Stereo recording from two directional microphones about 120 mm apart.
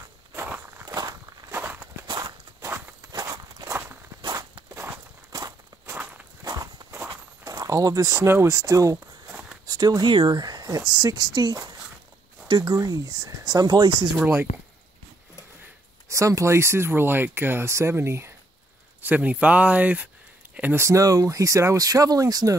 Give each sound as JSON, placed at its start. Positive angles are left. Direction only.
{"t": 0.5, "sound": "walk", "side_deg": -15}
{"t": 0.8, "sound": "walk", "side_deg": -35}
{"t": 1.5, "sound": "walk", "side_deg": -15}
{"t": 2.0, "sound": "walk", "side_deg": -40}
{"t": 4.2, "sound": "walk", "side_deg": -40}
{"t": 4.7, "sound": "walk", "side_deg": -20}
{"t": 6.4, "sound": "walk", "side_deg": -35}
{"t": 7.4, "sound": "speech", "side_deg": -30}
{"t": 14.2, "sound": "speech", "side_deg": -20}
{"t": 16.1, "sound": "speech", "side_deg": -25}